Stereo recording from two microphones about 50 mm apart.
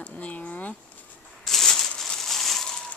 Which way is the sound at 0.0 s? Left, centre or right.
Left.